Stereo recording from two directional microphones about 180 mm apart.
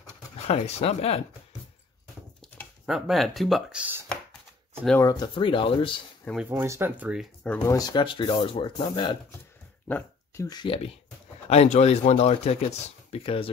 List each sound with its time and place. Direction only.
0.5 s speech: 35° left (ahead or behind)
2.4 s speech: centre (ahead or behind)
5.0 s speech: 25° left (ahead or behind)
6.5 s speech: 15° right (ahead or behind)
7.4 s speech: 5° left (ahead or behind)
7.7 s speech: 25° left (ahead or behind)
9.8 s speech: 10° left (ahead or behind); by 13.5 s 30° left (ahead or behind)